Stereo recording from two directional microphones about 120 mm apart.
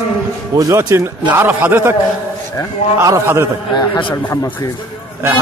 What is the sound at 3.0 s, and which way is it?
Speech, 25° right (ahead or behind).